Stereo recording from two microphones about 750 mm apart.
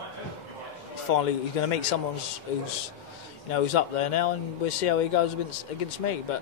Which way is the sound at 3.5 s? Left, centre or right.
Left.